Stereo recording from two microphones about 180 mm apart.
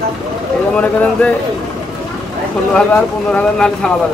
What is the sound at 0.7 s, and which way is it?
Speech, 5° left (ahead or behind).